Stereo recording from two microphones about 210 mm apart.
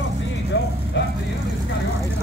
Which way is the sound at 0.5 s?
60° left (ahead or behind).